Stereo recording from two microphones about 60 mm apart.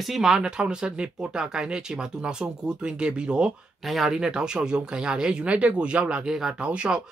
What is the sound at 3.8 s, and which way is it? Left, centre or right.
Speech, centre.